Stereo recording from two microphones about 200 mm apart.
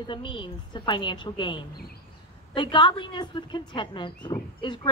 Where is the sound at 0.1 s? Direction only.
25° left (ahead or behind).